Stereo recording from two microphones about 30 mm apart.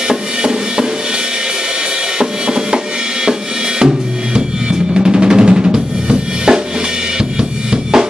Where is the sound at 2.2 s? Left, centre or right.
Right.